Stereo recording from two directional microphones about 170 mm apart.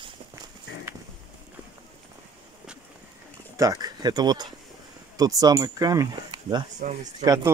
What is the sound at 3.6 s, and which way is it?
Speech, 20° right (ahead or behind).